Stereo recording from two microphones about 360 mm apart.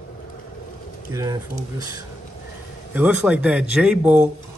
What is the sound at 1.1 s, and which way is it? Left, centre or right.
Speech, centre.